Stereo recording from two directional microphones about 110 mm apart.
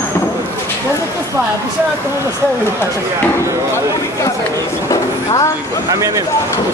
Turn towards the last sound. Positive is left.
turn(degrees=-30)  # may be behind; listen again after turning